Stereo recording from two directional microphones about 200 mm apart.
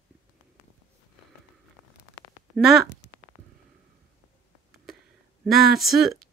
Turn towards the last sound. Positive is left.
turn(degrees=0)  # may be behind; listen again after turning